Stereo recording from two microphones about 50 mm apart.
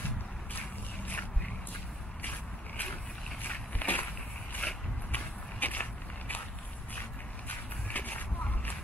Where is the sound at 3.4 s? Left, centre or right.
Left.